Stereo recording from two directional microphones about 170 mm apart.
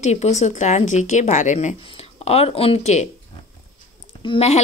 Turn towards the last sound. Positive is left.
turn(degrees=35)  # may be behind; listen again after turning